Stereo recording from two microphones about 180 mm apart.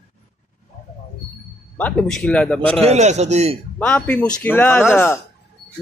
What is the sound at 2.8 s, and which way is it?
Speech, 40° right (ahead or behind).